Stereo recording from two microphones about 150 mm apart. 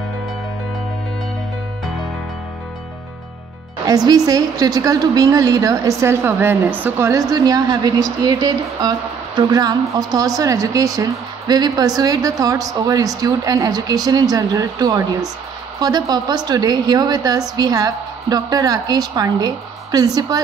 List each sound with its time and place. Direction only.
3.8 s a woman's voice: 25° right (ahead or behind)